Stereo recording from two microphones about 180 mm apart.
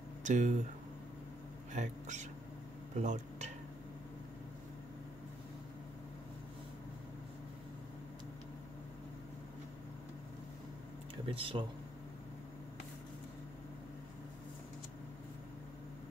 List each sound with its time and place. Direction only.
0.2 s speech: 45° right (ahead or behind)
1.7 s speech: 40° right (ahead or behind)
11.2 s speech: 30° right (ahead or behind)